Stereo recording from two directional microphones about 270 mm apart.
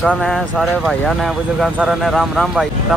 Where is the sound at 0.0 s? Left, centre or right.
Centre.